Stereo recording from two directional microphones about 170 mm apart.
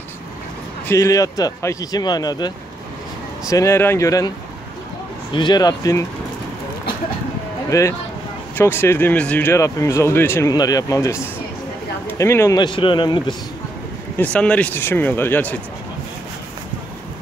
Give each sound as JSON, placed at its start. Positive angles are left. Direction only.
{"t": 0.8, "sound": "speech", "side_deg": 20}
{"t": 5.3, "sound": "speech", "side_deg": 25}
{"t": 7.7, "sound": "speech", "side_deg": 15}
{"t": 12.5, "sound": "speech", "side_deg": 30}
{"t": 14.1, "sound": "speech", "side_deg": 10}